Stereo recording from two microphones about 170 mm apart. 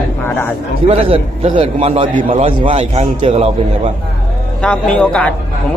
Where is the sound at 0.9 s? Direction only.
35° right (ahead or behind).